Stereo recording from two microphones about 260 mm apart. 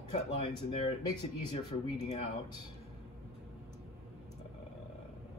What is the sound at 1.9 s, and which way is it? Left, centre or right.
Speech, left.